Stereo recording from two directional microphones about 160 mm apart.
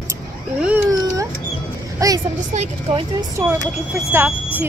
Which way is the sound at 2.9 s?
35° right (ahead or behind).